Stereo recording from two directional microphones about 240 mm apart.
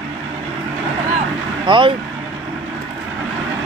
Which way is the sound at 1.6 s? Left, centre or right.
Centre.